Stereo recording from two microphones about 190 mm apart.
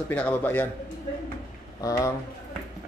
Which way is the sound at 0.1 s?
10° left (ahead or behind).